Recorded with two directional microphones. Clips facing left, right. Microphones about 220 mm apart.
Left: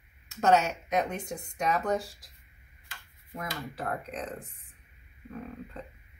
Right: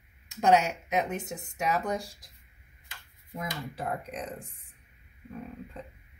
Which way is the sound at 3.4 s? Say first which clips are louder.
Right 1 dB; 15° right (ahead or behind).